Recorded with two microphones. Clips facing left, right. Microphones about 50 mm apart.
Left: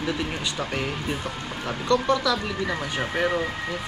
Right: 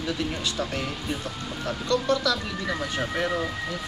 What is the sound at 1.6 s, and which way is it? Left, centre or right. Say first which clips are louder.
Speech: left 3 dB; left.